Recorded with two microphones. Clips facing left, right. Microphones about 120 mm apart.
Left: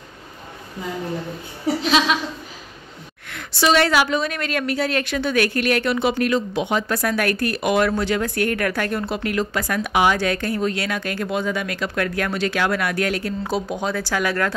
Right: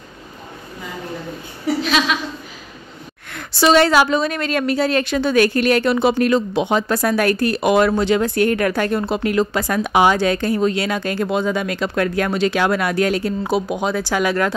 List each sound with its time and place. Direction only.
1.8 s a sound: 25° left (ahead or behind)
3.3 s a woman's voice: 40° right (ahead or behind)
13.5 s speech: 10° right (ahead or behind)